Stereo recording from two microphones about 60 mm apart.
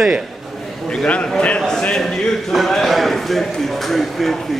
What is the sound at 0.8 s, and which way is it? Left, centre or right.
A man's voice, centre.